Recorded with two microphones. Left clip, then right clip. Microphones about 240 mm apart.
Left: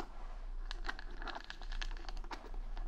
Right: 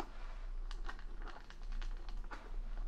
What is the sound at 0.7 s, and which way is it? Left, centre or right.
Music, left.